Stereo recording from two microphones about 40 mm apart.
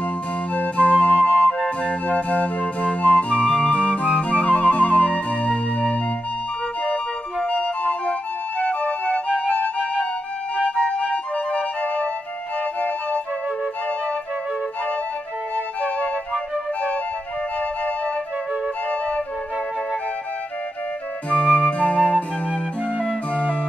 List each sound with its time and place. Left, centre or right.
0.6 s flute: left
1.8 s music: left
7.4 s music: left
17.6 s flute: left
21.3 s flute: left